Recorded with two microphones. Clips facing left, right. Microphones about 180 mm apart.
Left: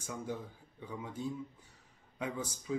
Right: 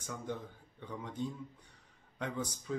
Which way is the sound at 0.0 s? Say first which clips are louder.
Left 1 dB; 5° left (ahead or behind).